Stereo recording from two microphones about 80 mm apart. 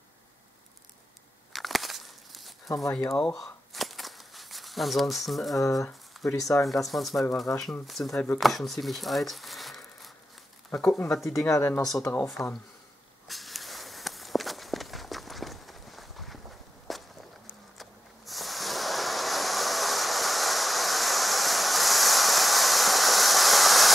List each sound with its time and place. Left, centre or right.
1.5 s walk: centre
2.8 s speech: centre
3.2 s a sound: centre
5.6 s speech: left
6.9 s speech: centre
7.5 s speech: left
7.8 s speech: centre
11.3 s speech: left
12.4 s speech: centre
13.3 s walk: centre
17.7 s waves: centre